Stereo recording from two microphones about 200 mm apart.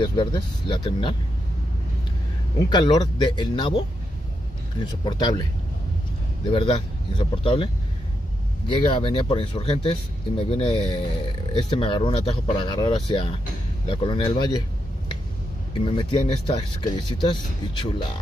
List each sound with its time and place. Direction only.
0.0 s speech: 25° left (ahead or behind)
2.7 s speech: 20° left (ahead or behind)
6.5 s speech: 25° left (ahead or behind)
15.8 s speech: 25° left (ahead or behind)